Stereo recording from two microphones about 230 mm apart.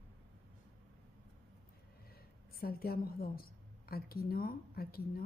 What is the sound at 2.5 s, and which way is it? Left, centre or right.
A woman's voice, left.